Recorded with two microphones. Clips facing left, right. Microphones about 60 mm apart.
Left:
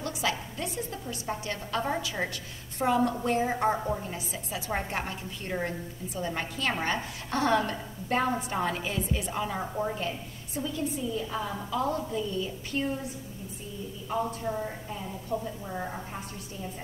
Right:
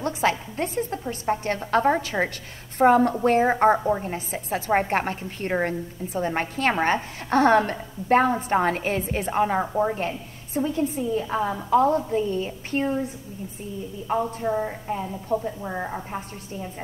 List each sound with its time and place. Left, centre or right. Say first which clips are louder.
0.0 s a woman's voice: right 7 dB; right
9.6 s a woman's voice: right 8 dB; right
14.0 s a woman's voice: right 6 dB; right